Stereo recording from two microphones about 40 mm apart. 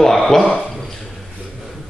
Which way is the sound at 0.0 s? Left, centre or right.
Centre.